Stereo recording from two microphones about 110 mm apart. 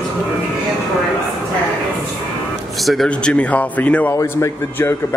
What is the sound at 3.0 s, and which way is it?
Speech, 10° left (ahead or behind).